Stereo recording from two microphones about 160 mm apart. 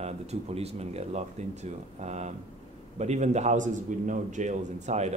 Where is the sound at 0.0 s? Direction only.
40° right (ahead or behind).